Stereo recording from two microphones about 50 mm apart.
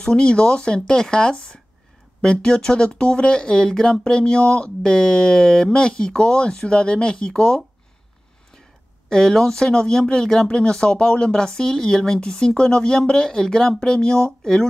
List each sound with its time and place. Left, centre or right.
0.0 s speech: centre
9.1 s speech: centre